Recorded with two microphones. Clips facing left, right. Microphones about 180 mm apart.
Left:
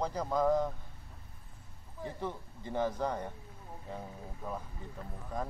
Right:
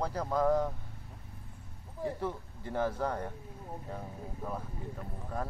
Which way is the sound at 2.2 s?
5° right (ahead or behind).